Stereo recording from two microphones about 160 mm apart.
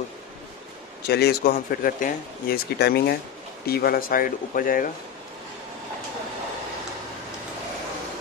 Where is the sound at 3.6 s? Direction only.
75° left (ahead or behind).